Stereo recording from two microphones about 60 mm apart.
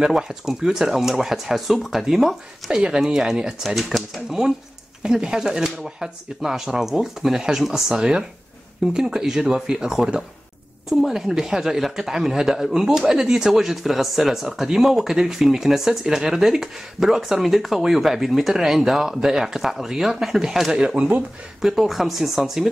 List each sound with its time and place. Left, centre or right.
0.0 s speech: centre